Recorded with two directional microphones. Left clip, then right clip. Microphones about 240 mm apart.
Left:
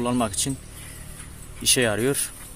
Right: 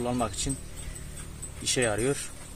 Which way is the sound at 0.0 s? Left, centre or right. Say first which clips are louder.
Left 5 dB; left.